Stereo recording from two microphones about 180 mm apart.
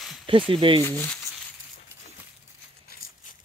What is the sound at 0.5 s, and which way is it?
Speech, 30° right (ahead or behind).